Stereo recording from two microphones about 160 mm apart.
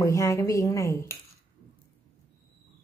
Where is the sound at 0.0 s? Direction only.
20° left (ahead or behind).